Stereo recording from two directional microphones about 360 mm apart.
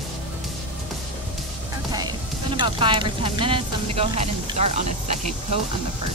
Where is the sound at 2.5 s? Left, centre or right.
Centre.